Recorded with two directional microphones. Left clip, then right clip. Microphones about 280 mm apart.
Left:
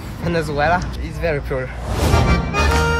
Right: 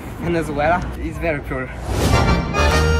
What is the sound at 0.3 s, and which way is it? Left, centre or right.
Speech, left.